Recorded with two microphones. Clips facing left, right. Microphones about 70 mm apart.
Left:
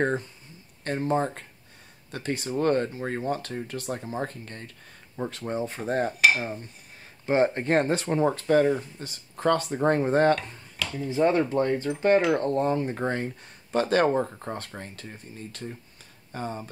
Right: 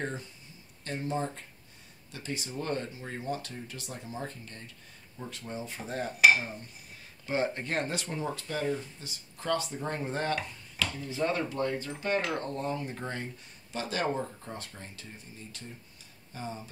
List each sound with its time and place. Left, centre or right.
0.0 s speech: left
6.3 s speech: left
10.3 s a sound: centre
11.0 s speech: left
11.9 s speech: centre
12.4 s speech: left